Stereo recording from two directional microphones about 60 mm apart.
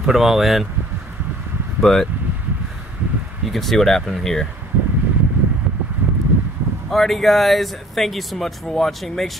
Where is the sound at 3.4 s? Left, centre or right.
Centre.